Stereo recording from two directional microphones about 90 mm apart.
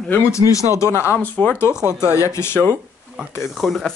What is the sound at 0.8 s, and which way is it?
Speech, 30° left (ahead or behind).